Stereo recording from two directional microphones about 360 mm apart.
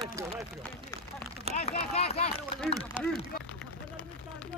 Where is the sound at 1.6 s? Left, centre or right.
Centre.